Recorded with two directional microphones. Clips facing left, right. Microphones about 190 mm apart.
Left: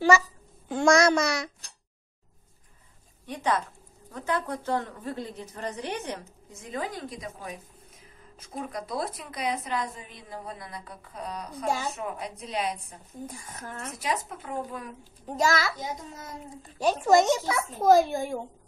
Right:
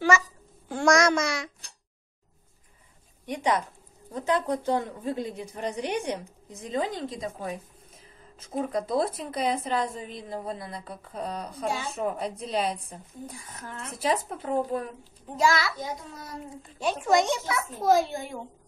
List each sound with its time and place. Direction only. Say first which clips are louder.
0.1 s a child's voice: left 2 dB; 35° left (ahead or behind)
0.7 s babbling: left 1 dB; 20° left (ahead or behind)
0.9 s a child's voice: left 1 dB; 35° left (ahead or behind)
3.3 s a woman's voice: right 2 dB; 15° right (ahead or behind)
8.5 s a woman's voice: right 6 dB; 25° right (ahead or behind)
13.5 s a child's voice: left 1 dB; 45° left (ahead or behind)
13.9 s speech: right 5 dB; 30° right (ahead or behind)
15.2 s a child's voice: right 1 dB; 45° left (ahead or behind)
16.8 s a child's voice: left 3 dB; 40° left (ahead or behind)